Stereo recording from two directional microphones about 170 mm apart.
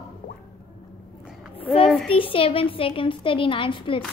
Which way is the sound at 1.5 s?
35° left (ahead or behind).